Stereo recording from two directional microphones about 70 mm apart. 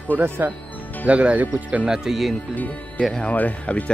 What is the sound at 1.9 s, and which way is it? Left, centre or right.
Speech, centre.